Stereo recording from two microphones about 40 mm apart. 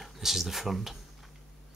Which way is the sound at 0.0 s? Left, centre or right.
Centre.